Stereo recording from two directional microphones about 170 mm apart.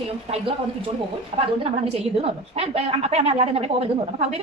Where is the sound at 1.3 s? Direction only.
40° right (ahead or behind).